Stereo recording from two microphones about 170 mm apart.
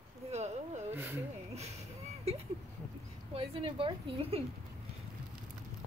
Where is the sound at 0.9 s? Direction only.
15° right (ahead or behind).